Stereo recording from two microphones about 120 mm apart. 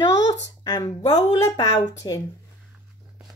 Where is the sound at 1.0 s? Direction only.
35° left (ahead or behind).